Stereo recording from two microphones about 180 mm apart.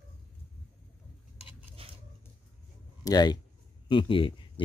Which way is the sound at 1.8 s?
30° right (ahead or behind).